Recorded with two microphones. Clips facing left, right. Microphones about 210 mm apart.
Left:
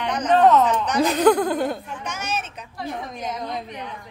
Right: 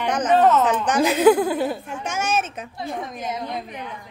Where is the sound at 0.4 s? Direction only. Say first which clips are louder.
Left 4 dB; 5° right (ahead or behind).